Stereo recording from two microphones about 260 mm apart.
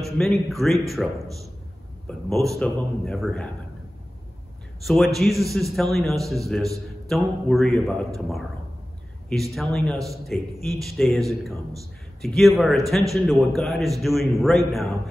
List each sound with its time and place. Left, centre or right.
0.0 s a man's voice: centre
4.8 s a man's voice: centre
9.3 s a man's voice: centre